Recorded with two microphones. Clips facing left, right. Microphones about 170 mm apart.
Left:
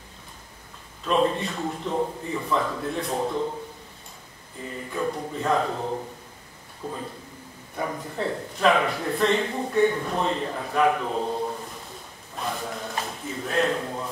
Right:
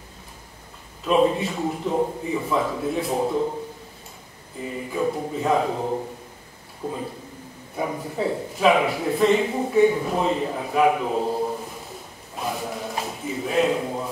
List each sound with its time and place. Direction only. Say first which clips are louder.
1.0 s a man's voice: right 4 dB; 5° right (ahead or behind)
4.6 s a man's voice: right 4 dB; 10° right (ahead or behind)
12.4 s a sound: right 2 dB; 5° right (ahead or behind)